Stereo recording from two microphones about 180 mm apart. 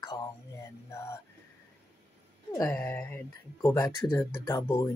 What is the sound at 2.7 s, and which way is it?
Speech, 5° left (ahead or behind).